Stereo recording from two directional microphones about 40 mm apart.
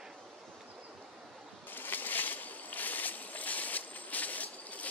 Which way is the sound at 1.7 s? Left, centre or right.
Left.